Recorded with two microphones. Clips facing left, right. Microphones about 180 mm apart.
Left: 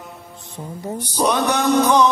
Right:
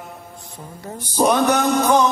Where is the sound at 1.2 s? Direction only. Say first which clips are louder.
Right 1 dB; 45° right (ahead or behind).